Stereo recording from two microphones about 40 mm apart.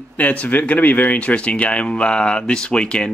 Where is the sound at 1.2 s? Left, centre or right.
Left.